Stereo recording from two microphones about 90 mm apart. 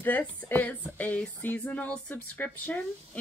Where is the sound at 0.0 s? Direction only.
15° left (ahead or behind).